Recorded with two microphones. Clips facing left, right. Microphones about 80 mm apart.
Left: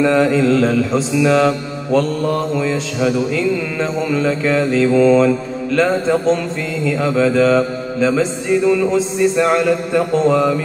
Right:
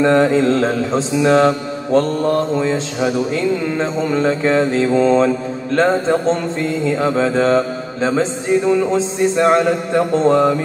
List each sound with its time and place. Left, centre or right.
0.0 s mantra: right